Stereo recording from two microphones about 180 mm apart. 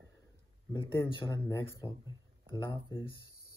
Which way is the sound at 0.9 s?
15° left (ahead or behind).